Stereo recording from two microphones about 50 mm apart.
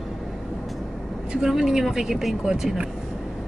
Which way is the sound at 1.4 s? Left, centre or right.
Centre.